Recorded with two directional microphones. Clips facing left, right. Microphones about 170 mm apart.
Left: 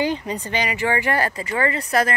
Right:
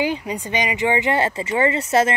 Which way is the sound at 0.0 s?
10° right (ahead or behind).